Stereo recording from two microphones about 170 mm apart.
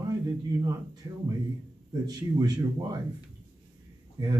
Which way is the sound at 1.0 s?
25° right (ahead or behind).